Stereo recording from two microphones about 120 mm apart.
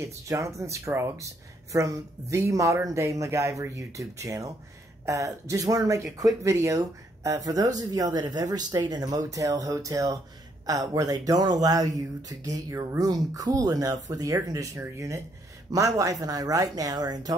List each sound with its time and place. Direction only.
0.0 s speech: 25° right (ahead or behind)